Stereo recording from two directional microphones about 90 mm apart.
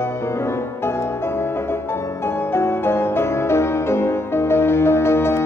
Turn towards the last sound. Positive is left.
turn(degrees=30)  # may be behind; listen again after turning